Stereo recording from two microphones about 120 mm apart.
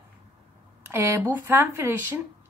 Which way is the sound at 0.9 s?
20° right (ahead or behind).